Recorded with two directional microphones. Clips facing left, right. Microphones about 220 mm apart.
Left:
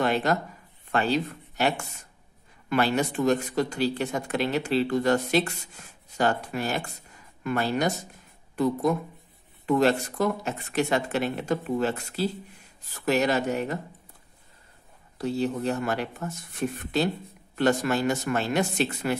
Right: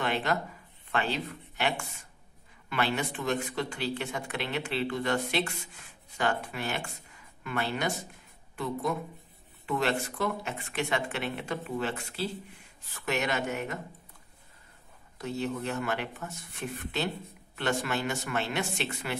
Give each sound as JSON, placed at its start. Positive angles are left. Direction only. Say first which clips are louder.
{"t": 0.0, "sound": "a sound", "louder": "left 6 dB", "side_deg": 40}
{"t": 0.9, "sound": "speech", "louder": "left 6 dB", "side_deg": 40}
{"t": 15.1, "sound": "speech", "louder": "left 6 dB", "side_deg": 35}